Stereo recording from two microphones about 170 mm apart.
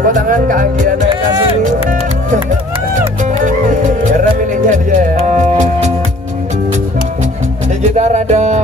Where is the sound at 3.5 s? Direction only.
50° right (ahead or behind).